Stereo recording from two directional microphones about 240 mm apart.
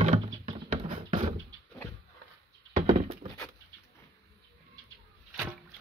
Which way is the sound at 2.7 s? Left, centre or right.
Right.